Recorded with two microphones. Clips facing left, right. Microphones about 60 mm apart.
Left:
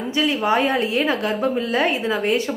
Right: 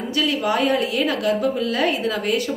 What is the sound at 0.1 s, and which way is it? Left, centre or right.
A woman's voice, left.